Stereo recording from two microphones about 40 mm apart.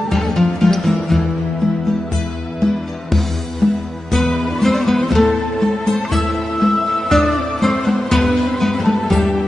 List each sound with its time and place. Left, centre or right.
0.1 s music: centre
2.6 s music: centre
3.6 s music: centre
4.1 s music: centre